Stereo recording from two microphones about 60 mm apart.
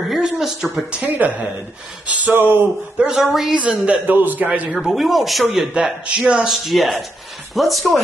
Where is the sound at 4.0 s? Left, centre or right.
Right.